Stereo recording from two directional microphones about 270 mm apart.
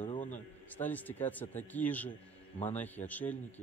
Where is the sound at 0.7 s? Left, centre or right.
Centre.